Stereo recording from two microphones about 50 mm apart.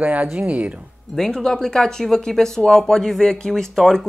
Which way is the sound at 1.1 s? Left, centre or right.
Centre.